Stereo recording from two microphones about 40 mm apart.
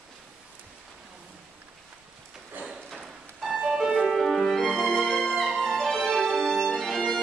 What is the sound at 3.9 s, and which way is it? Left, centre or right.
Music, centre.